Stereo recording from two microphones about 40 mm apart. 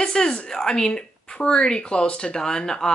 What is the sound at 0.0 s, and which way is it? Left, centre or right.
Speech, centre.